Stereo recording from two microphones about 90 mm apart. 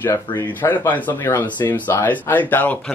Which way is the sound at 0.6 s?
20° left (ahead or behind).